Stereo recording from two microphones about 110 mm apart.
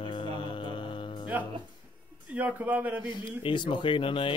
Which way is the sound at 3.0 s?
45° left (ahead or behind).